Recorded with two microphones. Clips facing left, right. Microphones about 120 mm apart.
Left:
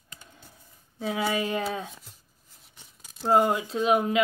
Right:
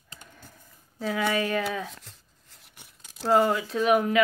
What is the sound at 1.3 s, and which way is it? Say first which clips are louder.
Speech: right 2 dB; 20° left (ahead or behind).